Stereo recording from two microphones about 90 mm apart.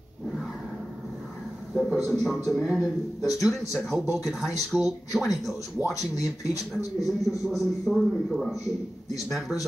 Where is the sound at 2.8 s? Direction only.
40° left (ahead or behind).